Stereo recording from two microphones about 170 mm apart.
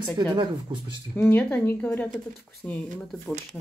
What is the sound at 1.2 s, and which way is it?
Speech, 10° left (ahead or behind).